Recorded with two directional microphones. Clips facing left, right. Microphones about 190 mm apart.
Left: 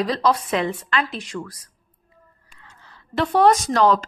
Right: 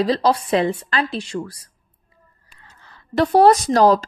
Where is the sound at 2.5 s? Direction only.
40° right (ahead or behind).